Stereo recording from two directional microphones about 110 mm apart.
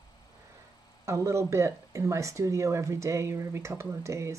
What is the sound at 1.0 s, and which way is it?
Speech, 25° right (ahead or behind).